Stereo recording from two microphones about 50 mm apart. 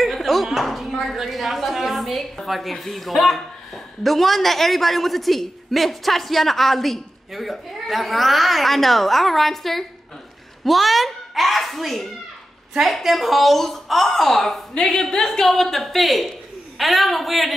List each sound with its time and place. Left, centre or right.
0.0 s a woman's voice: centre
14.7 s speech: centre
15.0 s a woman's voice: centre